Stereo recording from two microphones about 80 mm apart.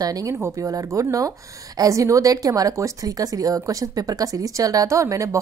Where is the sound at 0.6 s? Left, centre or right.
Right.